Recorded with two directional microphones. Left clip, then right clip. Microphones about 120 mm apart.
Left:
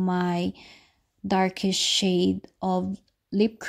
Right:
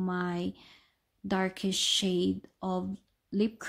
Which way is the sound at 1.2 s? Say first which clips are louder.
Left 7 dB; 35° left (ahead or behind).